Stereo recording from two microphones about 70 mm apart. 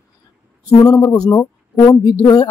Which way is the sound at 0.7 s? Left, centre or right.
Left.